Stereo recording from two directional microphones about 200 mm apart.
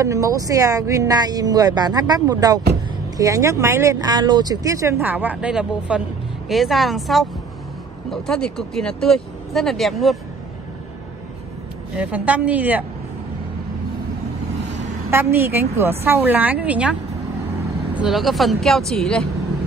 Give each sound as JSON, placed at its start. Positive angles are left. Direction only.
{"t": 0.0, "sound": "speech", "side_deg": -15}
{"t": 12.0, "sound": "speech", "side_deg": -5}
{"t": 15.0, "sound": "speech", "side_deg": -10}
{"t": 17.9, "sound": "speech", "side_deg": 0}